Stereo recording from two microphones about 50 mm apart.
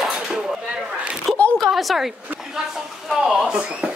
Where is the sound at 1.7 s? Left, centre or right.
Centre.